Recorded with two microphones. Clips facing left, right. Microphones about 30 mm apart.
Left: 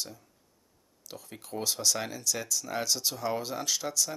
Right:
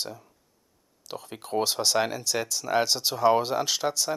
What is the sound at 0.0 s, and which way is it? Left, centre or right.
Speech, right.